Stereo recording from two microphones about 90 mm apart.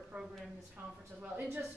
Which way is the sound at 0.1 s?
15° right (ahead or behind).